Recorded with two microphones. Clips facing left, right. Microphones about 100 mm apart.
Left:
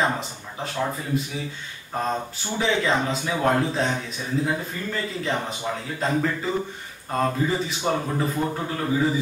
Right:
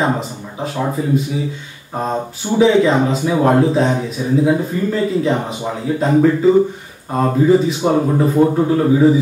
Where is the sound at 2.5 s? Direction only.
5° right (ahead or behind).